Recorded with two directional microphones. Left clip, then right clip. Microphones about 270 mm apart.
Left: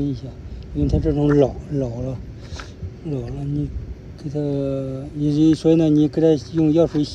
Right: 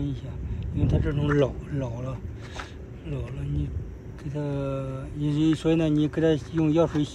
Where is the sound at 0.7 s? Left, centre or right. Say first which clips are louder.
Left 8 dB; centre.